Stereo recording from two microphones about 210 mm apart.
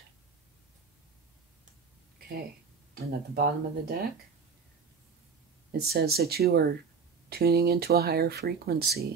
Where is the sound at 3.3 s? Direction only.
45° right (ahead or behind).